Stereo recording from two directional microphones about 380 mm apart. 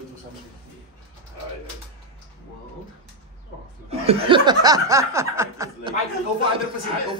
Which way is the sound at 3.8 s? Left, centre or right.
Centre.